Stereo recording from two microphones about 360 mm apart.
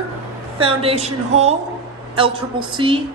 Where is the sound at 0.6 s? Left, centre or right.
Centre.